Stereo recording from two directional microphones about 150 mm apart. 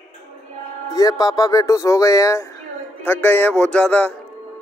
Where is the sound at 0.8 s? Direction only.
25° left (ahead or behind); by 4.1 s 10° left (ahead or behind).